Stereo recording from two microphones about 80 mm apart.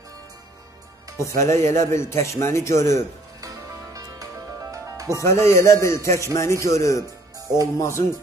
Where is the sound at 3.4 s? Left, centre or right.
Right.